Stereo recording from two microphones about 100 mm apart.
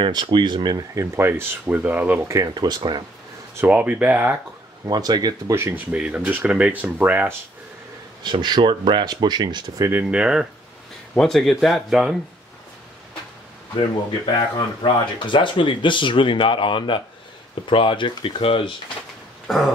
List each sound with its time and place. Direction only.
0.0 s speech: 50° right (ahead or behind)
1.1 s speech: 25° right (ahead or behind)
2.2 s speech: 35° right (ahead or behind)
3.5 s speech: 15° right (ahead or behind)
4.8 s speech: 45° right (ahead or behind)
5.5 s speech: 25° right (ahead or behind)
5.9 s speech: 10° right (ahead or behind)
8.2 s speech: 45° right (ahead or behind)
10.1 s speech: 10° right (ahead or behind)
14.8 s speech: 55° left (ahead or behind)
19.4 s a sound: centre (ahead or behind)